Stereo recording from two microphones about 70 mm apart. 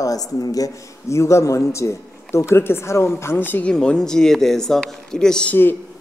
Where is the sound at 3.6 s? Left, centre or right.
Centre.